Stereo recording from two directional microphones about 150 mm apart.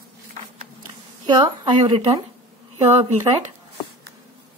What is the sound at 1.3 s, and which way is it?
Speech, 30° right (ahead or behind).